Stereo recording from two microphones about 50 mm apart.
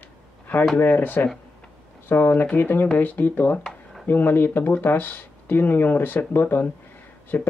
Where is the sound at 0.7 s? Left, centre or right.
Left.